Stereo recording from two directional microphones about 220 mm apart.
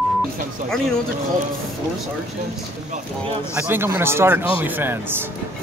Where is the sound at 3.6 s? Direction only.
10° right (ahead or behind).